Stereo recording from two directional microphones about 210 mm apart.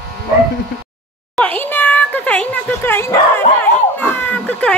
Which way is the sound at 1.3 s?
5° left (ahead or behind).